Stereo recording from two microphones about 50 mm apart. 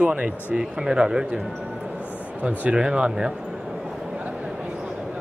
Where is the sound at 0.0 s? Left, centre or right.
Right.